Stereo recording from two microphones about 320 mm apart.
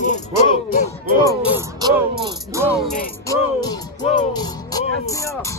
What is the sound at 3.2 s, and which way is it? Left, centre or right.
Music, centre.